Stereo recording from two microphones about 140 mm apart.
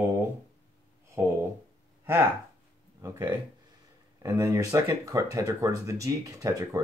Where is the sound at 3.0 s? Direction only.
20° right (ahead or behind).